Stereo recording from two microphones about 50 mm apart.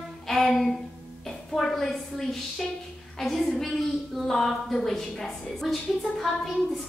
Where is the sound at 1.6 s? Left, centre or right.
Centre.